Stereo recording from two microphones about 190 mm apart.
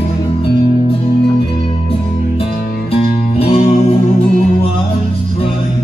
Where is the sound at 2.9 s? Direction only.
30° left (ahead or behind).